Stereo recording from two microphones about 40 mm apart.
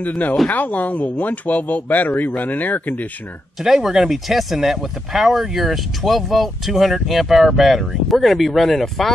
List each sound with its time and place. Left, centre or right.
0.0 s speech: left
3.6 s speech: centre